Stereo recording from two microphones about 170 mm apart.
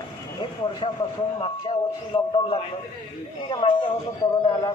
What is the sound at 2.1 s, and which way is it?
A man's voice, 30° left (ahead or behind).